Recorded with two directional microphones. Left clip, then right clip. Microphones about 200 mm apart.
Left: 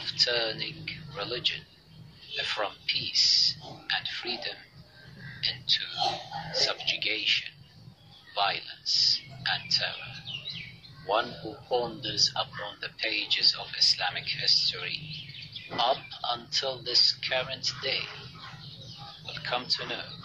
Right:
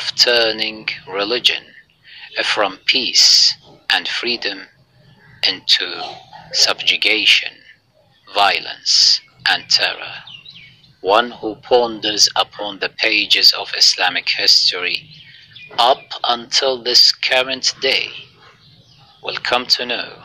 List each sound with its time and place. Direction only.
0.0 s a man's voice: 45° right (ahead or behind)
11.7 s speech: 40° right (ahead or behind)
19.2 s speech: 45° right (ahead or behind)